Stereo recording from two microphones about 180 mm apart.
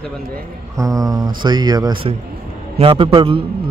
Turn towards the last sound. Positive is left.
turn(degrees=-30)  # may be behind; listen again after turning